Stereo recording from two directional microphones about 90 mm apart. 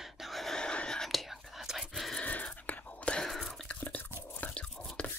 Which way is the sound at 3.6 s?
15° left (ahead or behind).